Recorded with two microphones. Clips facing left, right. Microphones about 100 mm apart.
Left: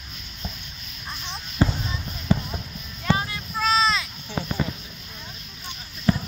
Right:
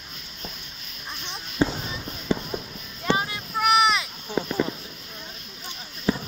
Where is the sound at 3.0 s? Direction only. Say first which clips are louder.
Even; 20° right (ahead or behind).